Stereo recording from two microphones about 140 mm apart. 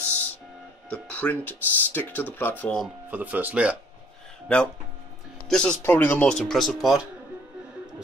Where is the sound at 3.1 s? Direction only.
10° right (ahead or behind).